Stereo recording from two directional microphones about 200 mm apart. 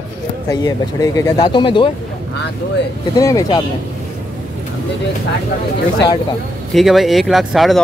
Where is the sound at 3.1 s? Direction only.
15° left (ahead or behind).